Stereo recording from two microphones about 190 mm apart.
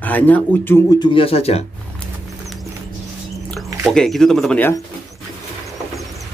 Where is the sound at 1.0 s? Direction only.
25° left (ahead or behind).